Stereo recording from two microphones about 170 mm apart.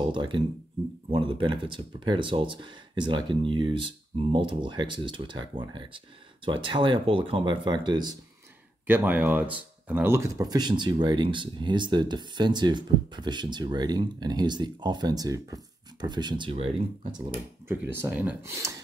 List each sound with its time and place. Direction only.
0.0 s speech: 30° right (ahead or behind)
8.8 s speech: 10° right (ahead or behind); by 16.7 s 35° right (ahead or behind)
17.6 s speech: 10° right (ahead or behind)